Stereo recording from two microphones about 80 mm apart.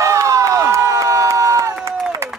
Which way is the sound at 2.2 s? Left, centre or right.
Right.